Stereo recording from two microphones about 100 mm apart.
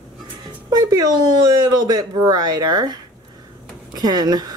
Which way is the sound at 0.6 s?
40° right (ahead or behind).